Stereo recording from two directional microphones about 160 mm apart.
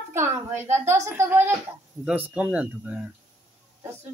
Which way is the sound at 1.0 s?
15° right (ahead or behind).